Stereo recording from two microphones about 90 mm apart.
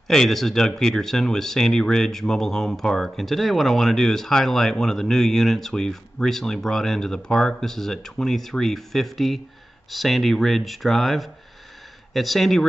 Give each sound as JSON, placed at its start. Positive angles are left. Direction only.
{"t": 0.1, "sound": "speech", "side_deg": 5}